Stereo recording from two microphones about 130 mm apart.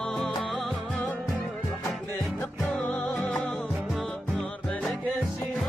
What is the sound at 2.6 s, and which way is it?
Music, 10° left (ahead or behind).